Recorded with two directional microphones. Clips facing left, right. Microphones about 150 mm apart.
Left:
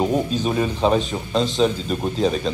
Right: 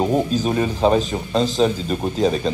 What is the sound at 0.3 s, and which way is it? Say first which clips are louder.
Speech: right 2 dB; 40° right (ahead or behind).